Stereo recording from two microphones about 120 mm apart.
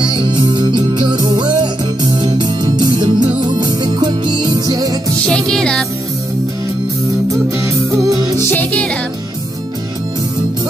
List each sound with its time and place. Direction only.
0.0 s music: 40° right (ahead or behind)
5.2 s music: 5° left (ahead or behind)
7.6 s music: 25° right (ahead or behind)
8.5 s music: 15° left (ahead or behind)